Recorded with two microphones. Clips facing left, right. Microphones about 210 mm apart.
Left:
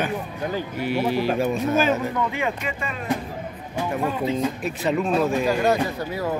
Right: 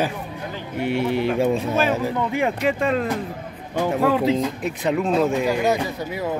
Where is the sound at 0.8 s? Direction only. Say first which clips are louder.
Right 2 dB; 25° right (ahead or behind).